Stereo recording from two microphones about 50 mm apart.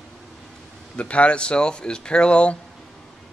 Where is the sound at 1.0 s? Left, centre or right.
Left.